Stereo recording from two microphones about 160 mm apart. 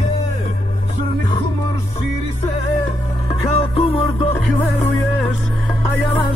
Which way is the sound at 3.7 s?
35° left (ahead or behind).